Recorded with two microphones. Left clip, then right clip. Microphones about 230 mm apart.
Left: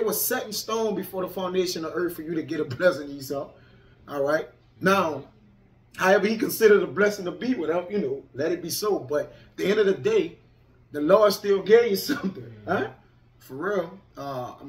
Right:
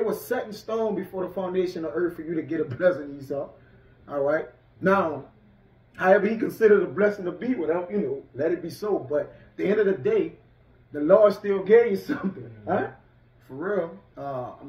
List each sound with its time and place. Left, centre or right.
0.0 s speech: centre